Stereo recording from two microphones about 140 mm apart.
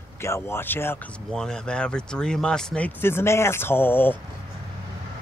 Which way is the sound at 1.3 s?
5° left (ahead or behind).